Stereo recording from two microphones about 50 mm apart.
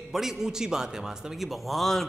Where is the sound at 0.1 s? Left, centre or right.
Centre.